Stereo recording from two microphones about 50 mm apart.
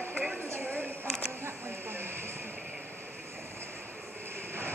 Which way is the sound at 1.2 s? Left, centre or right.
Right.